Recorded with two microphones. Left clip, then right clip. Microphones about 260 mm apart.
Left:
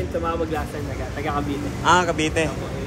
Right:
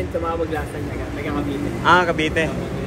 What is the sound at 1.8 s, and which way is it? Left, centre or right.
Speech, centre.